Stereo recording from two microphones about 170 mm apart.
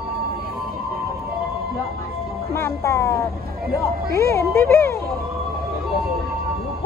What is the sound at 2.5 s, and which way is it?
Speech, 15° left (ahead or behind).